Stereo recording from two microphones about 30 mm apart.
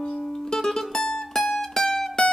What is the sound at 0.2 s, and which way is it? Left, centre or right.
Music, centre.